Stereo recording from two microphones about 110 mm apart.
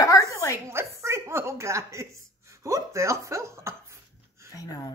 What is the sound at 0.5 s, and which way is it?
A woman's voice, 25° right (ahead or behind).